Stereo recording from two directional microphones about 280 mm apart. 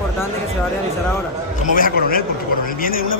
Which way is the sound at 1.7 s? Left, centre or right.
Left.